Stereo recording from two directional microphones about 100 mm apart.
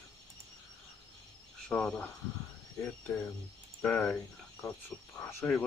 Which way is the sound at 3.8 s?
10° left (ahead or behind).